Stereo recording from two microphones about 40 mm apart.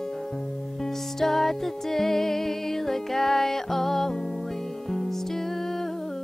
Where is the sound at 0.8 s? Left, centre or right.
Centre.